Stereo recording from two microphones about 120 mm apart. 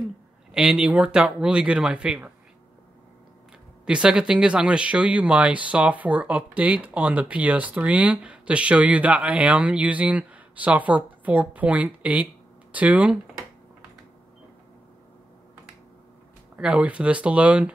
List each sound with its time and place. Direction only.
0.5 s speech: 5° right (ahead or behind)
3.8 s speech: 5° right (ahead or behind)
16.5 s speech: 10° right (ahead or behind)